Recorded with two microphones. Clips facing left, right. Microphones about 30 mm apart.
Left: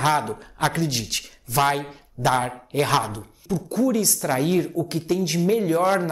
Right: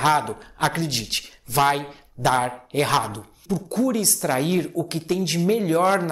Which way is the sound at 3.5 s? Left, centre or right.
Right.